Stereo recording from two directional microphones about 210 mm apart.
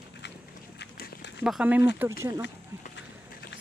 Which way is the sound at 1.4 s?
5° right (ahead or behind).